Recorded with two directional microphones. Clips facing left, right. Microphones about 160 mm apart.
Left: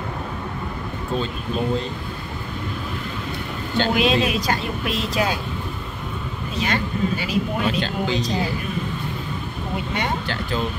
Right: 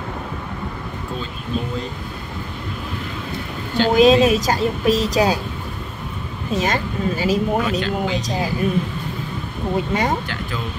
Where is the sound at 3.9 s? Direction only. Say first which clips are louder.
Right 9 dB; 40° right (ahead or behind).